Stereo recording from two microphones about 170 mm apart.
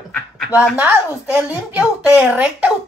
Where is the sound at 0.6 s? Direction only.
10° right (ahead or behind).